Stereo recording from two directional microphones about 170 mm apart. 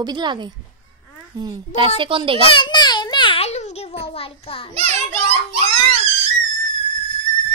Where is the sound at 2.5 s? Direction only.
25° left (ahead or behind).